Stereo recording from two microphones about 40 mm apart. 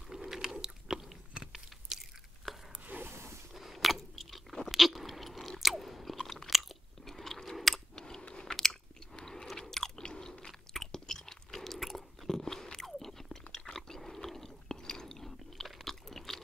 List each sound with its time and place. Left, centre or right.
0.1 s chewing: centre
2.5 s a sound: centre
2.9 s wild animals: right
3.5 s chewing: centre
4.6 s crunch: centre
5.6 s chewing: centre
7.9 s a sound: centre
9.1 s chewing: centre